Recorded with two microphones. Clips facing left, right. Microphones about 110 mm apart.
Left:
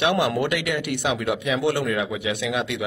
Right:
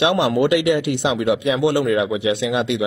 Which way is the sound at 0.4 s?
20° right (ahead or behind).